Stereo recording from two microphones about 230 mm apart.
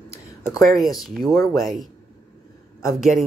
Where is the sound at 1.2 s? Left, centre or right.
Centre.